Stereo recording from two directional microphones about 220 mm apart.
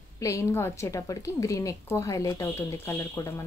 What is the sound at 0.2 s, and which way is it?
A woman's voice, 15° left (ahead or behind).